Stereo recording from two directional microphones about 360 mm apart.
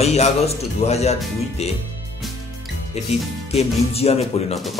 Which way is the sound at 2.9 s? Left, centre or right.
Centre.